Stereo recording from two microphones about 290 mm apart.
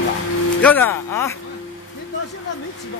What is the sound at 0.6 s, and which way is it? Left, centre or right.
Speech, centre.